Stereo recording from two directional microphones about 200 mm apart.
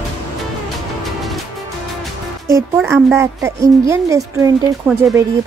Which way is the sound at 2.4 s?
15° right (ahead or behind).